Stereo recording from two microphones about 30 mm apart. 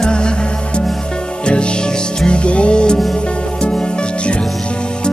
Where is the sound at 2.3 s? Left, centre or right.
Left.